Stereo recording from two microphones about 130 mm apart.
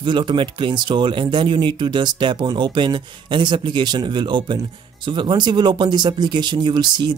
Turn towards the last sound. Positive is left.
turn(degrees=-35)  # may be behind; listen again after turning